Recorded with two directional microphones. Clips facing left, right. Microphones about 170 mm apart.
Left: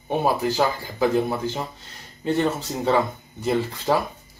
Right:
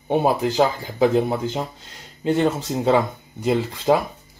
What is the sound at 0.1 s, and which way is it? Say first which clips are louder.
Speech: right 3 dB; 20° right (ahead or behind).